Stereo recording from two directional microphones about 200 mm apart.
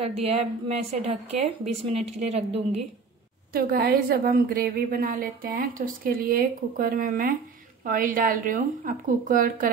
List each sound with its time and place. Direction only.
0.2 s a woman's voice: 30° right (ahead or behind)
3.5 s a woman's voice: 50° right (ahead or behind)